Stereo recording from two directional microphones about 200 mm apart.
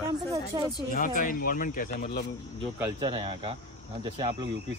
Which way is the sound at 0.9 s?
45° left (ahead or behind).